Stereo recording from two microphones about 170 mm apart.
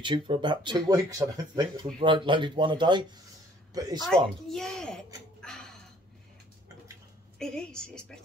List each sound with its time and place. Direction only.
0.0 s speech: 30° right (ahead or behind)
4.0 s speech: centre (ahead or behind)
7.3 s a woman's voice: 5° left (ahead or behind)